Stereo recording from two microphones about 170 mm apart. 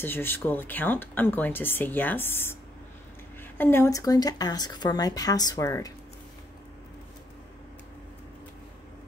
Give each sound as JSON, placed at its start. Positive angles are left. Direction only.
{"t": 0.0, "sound": "speech", "side_deg": 15}
{"t": 3.5, "sound": "speech", "side_deg": 10}